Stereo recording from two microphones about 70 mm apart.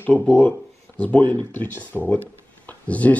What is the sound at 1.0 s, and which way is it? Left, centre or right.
Speech, left.